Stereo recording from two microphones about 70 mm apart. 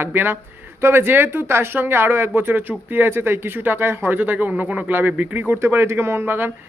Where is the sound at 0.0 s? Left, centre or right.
Right.